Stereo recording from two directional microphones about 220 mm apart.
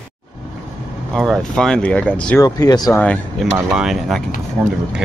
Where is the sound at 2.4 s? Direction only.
15° left (ahead or behind).